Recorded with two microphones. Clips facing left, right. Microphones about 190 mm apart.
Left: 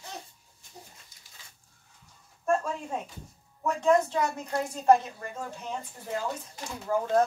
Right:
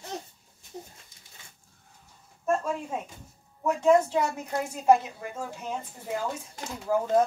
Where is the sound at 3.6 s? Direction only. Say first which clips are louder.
Right 2 dB; 5° right (ahead or behind).